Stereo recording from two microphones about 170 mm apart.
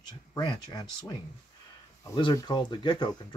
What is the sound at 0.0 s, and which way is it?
Speech, 20° left (ahead or behind).